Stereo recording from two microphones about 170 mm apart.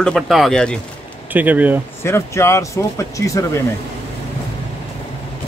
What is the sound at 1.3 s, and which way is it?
Speech, 10° right (ahead or behind).